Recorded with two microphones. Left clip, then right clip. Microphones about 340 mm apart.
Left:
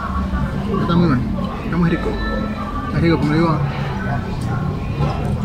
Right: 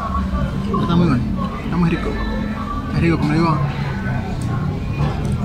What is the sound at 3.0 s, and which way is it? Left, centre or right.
Speech, centre.